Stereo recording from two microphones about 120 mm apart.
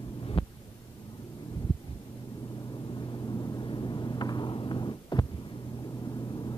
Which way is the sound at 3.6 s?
40° left (ahead or behind).